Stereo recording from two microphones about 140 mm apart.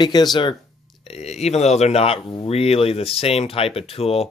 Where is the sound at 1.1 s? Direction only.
50° left (ahead or behind).